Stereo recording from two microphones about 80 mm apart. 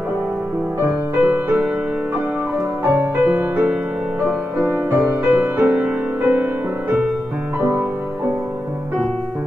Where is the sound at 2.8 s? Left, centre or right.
Right.